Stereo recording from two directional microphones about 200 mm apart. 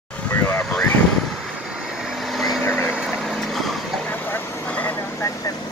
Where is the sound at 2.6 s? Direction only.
10° left (ahead or behind).